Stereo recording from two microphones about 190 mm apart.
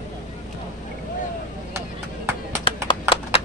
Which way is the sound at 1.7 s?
15° right (ahead or behind).